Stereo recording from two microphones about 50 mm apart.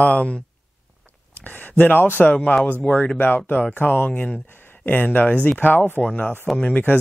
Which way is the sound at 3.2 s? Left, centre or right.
Left.